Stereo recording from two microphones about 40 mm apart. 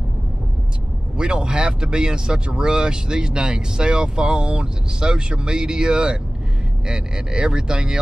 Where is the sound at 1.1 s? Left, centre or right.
Right.